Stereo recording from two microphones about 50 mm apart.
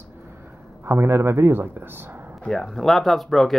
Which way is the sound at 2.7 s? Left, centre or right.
Centre.